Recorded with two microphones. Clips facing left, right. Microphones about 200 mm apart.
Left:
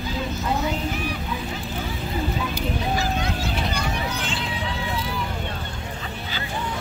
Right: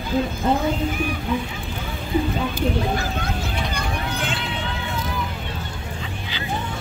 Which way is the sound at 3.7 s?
55° right (ahead or behind).